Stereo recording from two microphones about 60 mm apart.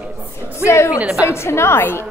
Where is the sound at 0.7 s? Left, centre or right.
Left.